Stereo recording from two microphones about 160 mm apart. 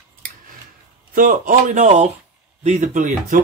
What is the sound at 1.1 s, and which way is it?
Speech, 60° right (ahead or behind).